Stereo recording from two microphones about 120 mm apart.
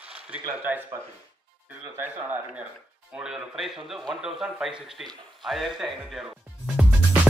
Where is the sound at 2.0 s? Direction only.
15° right (ahead or behind).